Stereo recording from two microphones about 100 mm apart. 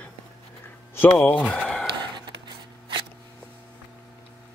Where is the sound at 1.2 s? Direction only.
10° left (ahead or behind).